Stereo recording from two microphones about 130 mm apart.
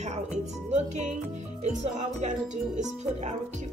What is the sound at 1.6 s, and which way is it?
Speech, 65° right (ahead or behind).